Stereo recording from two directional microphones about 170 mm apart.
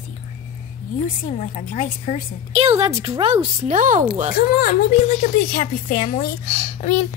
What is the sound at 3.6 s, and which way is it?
Speech, 50° right (ahead or behind).